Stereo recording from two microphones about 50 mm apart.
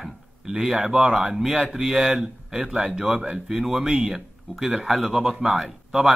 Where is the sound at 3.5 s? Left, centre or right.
Centre.